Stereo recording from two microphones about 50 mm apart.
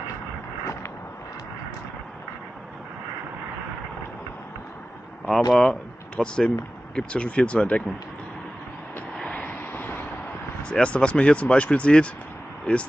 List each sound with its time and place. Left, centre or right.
5.3 s speech: centre
5.7 s speech: centre
9.2 s vehicle: left
9.5 s vehicle: left
10.6 s speech: left